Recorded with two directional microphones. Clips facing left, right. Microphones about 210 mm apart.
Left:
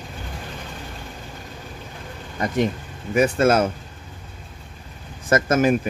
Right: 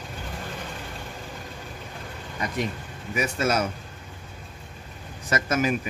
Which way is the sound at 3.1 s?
50° left (ahead or behind).